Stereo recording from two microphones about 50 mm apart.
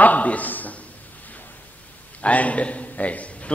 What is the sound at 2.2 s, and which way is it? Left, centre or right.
A man's voice, left.